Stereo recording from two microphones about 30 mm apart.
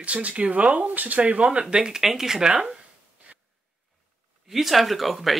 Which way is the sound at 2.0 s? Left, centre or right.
Centre.